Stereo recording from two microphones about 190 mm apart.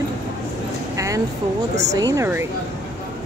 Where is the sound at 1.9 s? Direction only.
20° right (ahead or behind).